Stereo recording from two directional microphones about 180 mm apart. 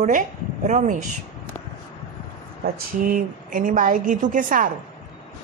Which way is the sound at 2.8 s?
50° right (ahead or behind).